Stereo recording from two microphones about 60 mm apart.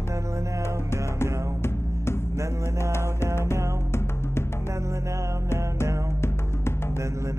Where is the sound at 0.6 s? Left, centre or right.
Left.